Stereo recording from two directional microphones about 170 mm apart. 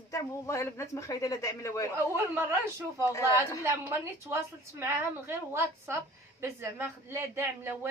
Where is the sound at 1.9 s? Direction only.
15° right (ahead or behind).